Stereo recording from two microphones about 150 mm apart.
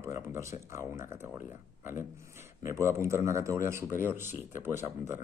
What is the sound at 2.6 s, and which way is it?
Speech, 20° right (ahead or behind).